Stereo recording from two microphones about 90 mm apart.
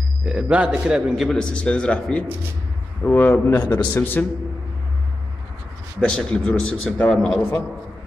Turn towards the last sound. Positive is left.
turn(degrees=10)  # may be behind; listen again after turning